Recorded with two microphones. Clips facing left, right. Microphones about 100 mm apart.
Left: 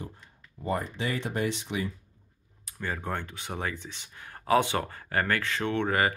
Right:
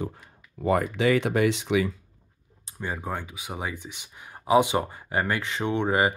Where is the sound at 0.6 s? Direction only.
85° right.